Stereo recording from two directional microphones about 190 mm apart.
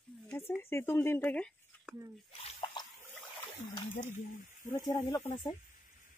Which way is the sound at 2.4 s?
30° left (ahead or behind).